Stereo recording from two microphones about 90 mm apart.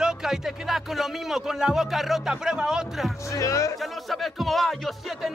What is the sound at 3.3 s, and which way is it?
Speech, 35° left (ahead or behind).